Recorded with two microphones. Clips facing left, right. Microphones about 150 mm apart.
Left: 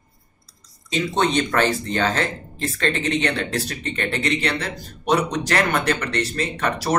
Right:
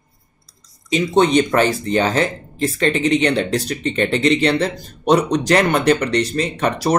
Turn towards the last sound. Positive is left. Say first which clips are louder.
# right 4 dB
turn(degrees=-20)  # may be behind; listen again after turning